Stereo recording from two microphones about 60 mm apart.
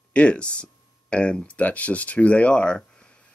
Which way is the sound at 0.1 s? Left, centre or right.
Centre.